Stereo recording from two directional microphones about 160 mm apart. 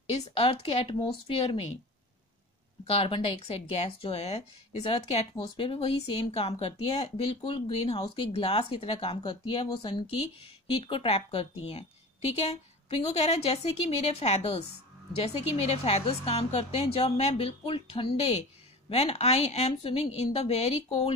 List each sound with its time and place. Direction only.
0.0 s speech: 35° left (ahead or behind)
2.9 s speech: 35° left (ahead or behind)
13.0 s speech: 40° left (ahead or behind)